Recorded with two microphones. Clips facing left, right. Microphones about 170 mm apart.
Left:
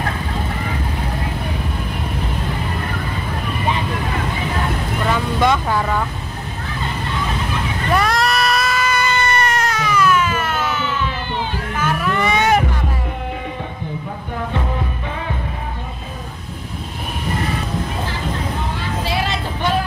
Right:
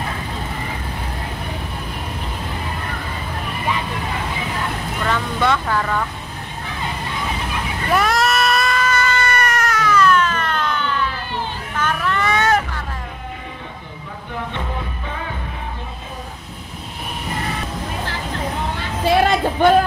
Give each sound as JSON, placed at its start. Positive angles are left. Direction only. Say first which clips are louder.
{"t": 5.1, "sound": "vehicle", "louder": "left 2 dB", "side_deg": 15}
{"t": 7.9, "sound": "baby cry", "louder": "even", "side_deg": 0}
{"t": 9.8, "sound": "baby cry", "louder": "right 1 dB", "side_deg": 10}
{"t": 11.7, "sound": "vehicle", "louder": "left 1 dB", "side_deg": 10}
{"t": 19.0, "sound": "a sound", "louder": "right 10 dB", "side_deg": -50}